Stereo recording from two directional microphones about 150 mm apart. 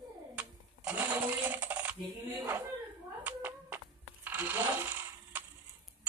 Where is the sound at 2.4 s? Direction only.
15° right (ahead or behind).